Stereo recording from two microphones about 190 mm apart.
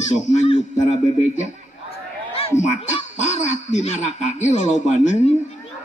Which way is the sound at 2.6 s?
40° left (ahead or behind).